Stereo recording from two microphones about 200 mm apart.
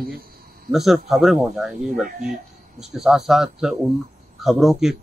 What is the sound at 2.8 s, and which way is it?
A man's voice, centre (ahead or behind).